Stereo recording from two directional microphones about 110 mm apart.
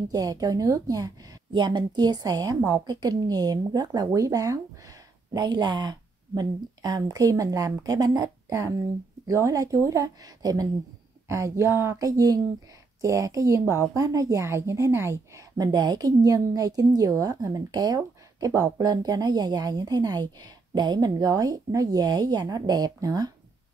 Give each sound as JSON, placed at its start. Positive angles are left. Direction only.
{"t": 0.1, "sound": "a woman's voice", "side_deg": -35}